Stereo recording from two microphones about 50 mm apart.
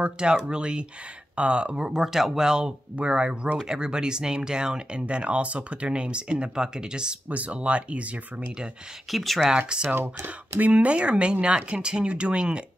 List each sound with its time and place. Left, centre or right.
0.0 s speech: centre
9.1 s speech: centre
9.7 s speech: centre
9.9 s speech: right
10.6 s speech: right